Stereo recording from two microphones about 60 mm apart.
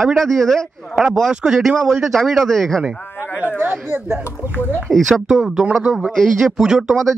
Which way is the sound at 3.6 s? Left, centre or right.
Right.